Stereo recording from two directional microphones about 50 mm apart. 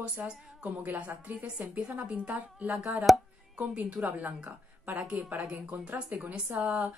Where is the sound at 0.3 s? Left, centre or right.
Centre.